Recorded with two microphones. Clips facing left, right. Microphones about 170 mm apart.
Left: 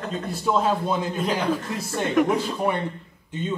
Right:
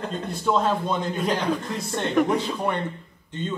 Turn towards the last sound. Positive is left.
turn(degrees=10)  # may be behind; listen again after turning